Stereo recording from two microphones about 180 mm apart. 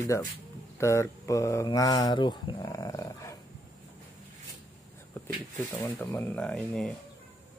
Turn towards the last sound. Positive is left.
turn(degrees=5)  # may be behind; listen again after turning